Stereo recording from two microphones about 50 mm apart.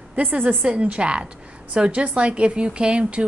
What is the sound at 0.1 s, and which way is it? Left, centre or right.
Speech, right.